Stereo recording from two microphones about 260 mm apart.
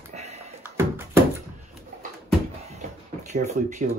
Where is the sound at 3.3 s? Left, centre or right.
Right.